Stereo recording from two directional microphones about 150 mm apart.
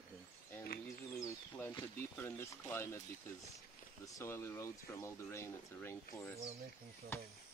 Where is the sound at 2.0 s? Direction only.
15° left (ahead or behind).